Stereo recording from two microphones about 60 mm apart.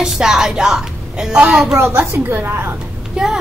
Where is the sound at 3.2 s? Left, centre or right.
Centre.